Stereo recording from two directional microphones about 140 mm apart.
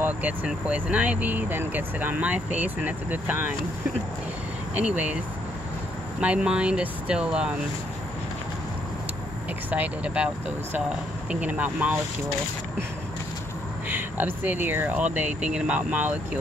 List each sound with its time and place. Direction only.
0.0 s speech: 10° right (ahead or behind)
4.7 s speech: 10° right (ahead or behind)
6.2 s speech: 10° right (ahead or behind)
9.7 s speech: 10° right (ahead or behind)
13.8 s speech: 15° right (ahead or behind)